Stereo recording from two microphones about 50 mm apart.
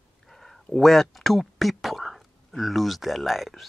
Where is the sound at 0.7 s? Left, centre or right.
Centre.